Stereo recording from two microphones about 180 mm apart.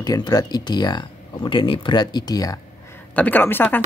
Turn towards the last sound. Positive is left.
turn(degrees=10)  # may be behind; listen again after turning